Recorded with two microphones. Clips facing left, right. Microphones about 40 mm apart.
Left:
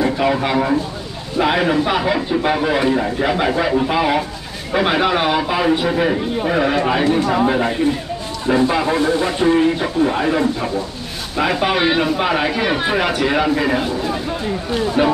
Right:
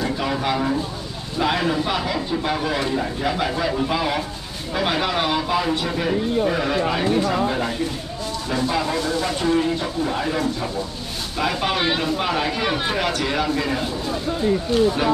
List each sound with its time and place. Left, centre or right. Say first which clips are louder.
0.0 s a sound: left 6 dB; left
1.4 s a man's voice: left 5 dB; left
11.3 s a man's voice: left 5 dB; centre